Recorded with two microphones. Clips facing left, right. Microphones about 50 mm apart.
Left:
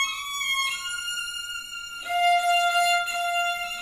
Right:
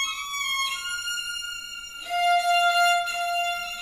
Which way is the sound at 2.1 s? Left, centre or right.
Left.